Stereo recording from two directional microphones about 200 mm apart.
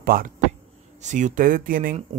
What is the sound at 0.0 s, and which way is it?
Speech, 50° right (ahead or behind).